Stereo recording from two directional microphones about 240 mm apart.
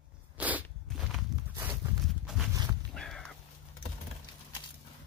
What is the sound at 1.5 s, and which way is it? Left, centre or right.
Walk, centre.